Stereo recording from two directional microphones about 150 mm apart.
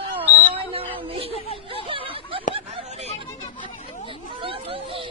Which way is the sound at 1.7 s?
35° right (ahead or behind).